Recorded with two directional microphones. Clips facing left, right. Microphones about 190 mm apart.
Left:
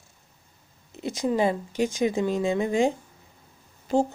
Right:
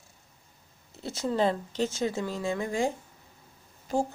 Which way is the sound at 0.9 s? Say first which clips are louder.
Left 4 dB; 15° left (ahead or behind).